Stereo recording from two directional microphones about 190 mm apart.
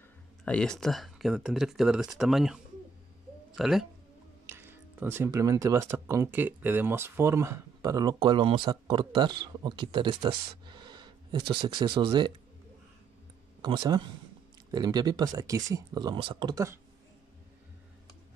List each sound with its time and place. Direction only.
0.5 s speech: 5° left (ahead or behind)
4.5 s speech: 10° right (ahead or behind)
13.6 s speech: 25° right (ahead or behind)